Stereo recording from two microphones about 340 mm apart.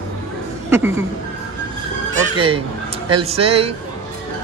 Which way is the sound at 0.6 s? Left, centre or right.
Centre.